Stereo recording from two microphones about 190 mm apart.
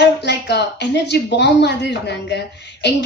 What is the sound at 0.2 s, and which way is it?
Speech, 60° left (ahead or behind).